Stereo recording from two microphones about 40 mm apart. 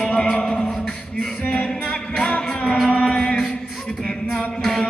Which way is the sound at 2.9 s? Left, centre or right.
Left.